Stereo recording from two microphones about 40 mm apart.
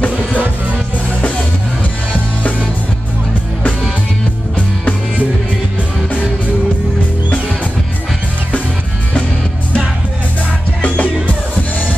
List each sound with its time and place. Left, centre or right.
10.8 s music: left